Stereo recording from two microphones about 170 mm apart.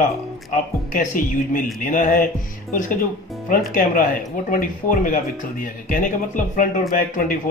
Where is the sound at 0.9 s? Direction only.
50° left (ahead or behind).